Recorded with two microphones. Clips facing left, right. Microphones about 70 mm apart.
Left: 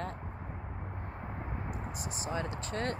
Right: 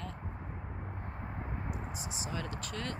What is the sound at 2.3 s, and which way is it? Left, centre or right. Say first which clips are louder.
Speech: left 5 dB; left.